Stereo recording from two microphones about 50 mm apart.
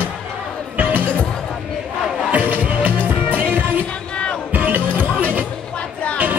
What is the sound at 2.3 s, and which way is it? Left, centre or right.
Music, right.